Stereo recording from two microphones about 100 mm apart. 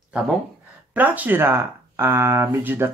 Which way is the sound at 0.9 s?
15° right (ahead or behind).